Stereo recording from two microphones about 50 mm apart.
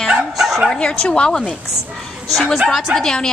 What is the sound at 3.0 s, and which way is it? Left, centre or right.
Speech, centre.